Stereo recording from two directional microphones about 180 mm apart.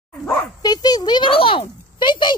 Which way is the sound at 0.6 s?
20° left (ahead or behind).